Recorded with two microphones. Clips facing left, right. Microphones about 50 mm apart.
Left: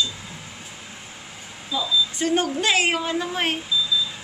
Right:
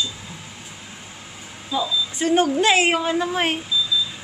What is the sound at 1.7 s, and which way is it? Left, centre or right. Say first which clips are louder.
Speech: even; centre.